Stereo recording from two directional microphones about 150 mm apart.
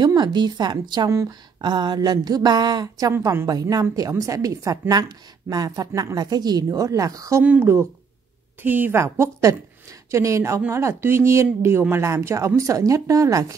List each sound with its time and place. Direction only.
0.0 s a woman's voice: 30° right (ahead or behind)